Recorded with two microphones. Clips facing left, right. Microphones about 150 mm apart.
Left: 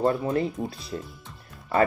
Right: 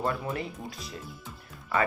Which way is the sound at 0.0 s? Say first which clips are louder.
Left 7 dB; 35° left (ahead or behind).